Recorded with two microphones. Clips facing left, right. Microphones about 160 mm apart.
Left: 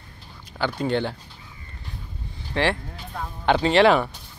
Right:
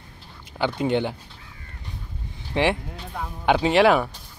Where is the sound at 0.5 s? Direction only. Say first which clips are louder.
Right 1 dB; 20° right (ahead or behind).